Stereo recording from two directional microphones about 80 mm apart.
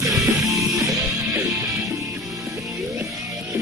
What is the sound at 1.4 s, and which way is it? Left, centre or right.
Music, right.